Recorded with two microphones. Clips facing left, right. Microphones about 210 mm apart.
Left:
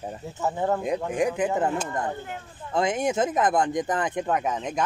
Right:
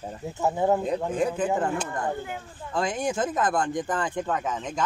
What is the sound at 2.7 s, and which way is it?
Speech, 20° left (ahead or behind).